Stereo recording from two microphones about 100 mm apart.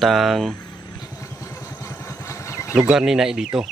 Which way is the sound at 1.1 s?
30° left (ahead or behind).